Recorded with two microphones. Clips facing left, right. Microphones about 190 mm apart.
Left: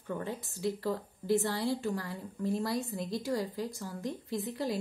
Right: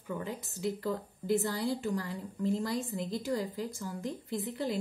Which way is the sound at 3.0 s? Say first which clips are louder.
Even; 20° right (ahead or behind).